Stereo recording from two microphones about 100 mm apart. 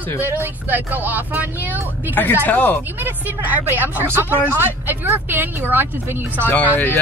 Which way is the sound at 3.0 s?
20° right (ahead or behind).